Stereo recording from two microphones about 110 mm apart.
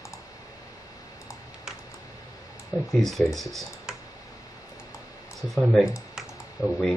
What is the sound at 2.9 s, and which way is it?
Speech, centre (ahead or behind).